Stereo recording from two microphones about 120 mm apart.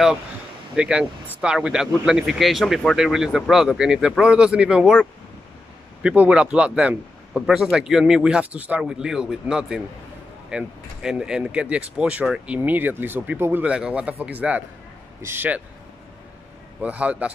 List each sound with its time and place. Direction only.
0.7 s speech: 10° right (ahead or behind)
6.0 s speech: 10° right (ahead or behind)
16.8 s speech: 10° right (ahead or behind)